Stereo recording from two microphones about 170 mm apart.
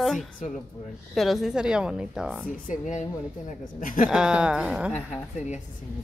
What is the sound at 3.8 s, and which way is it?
Speech, 50° left (ahead or behind).